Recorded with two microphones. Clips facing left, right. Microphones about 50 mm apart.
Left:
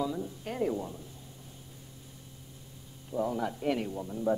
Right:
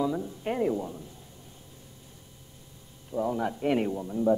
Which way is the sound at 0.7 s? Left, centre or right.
Centre.